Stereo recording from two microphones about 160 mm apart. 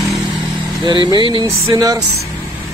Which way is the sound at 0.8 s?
25° right (ahead or behind).